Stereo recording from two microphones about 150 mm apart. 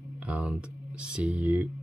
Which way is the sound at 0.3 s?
10° right (ahead or behind).